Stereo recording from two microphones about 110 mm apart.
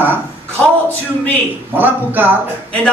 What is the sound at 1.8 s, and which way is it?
Speech, 15° right (ahead or behind).